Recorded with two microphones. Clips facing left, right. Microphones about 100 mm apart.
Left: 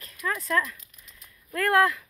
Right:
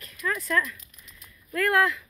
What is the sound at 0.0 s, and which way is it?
Speech, 35° left (ahead or behind).